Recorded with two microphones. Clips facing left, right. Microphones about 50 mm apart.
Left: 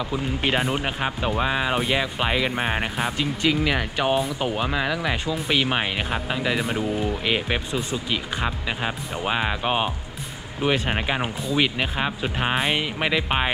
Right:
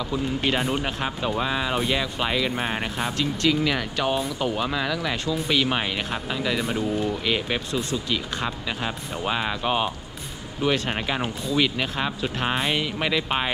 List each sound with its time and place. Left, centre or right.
0.0 s speech: centre